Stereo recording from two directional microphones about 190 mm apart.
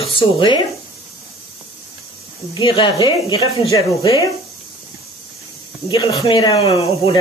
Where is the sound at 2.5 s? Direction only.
25° left (ahead or behind).